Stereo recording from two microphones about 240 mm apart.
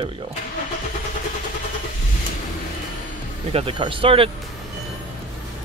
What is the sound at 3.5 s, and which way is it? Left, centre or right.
Speech, right.